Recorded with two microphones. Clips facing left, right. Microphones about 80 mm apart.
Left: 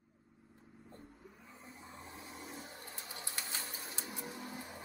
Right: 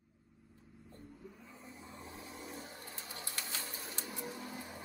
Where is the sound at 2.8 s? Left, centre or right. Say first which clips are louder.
Right 1 dB; centre.